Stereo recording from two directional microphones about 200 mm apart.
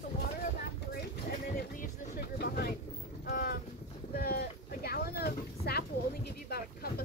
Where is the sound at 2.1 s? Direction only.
50° left (ahead or behind).